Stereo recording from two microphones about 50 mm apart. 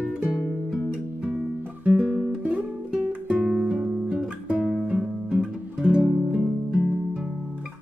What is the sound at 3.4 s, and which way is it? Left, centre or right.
Music, centre.